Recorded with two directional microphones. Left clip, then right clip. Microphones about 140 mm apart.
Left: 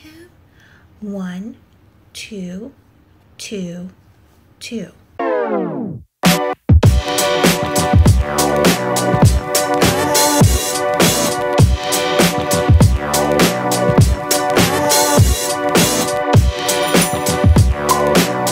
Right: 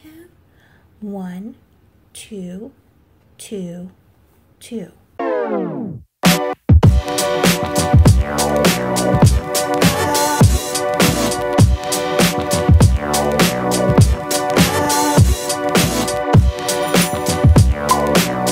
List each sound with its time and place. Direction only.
1.0 s speech: 35° right (ahead or behind)
5.1 s music: centre (ahead or behind)